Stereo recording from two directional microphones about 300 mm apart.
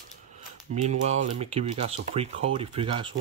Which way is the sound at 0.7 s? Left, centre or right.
Right.